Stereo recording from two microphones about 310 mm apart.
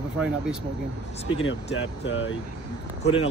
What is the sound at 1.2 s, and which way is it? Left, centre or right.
Speech, left.